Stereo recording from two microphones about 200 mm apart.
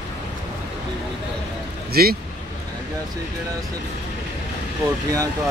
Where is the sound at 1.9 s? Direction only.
50° right (ahead or behind).